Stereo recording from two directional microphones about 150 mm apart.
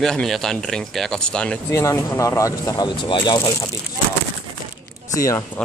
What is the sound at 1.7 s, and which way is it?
Speech, 20° left (ahead or behind).